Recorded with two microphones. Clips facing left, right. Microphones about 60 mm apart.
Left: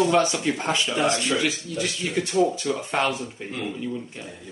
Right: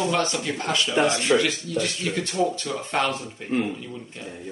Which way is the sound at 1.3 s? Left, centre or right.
Centre.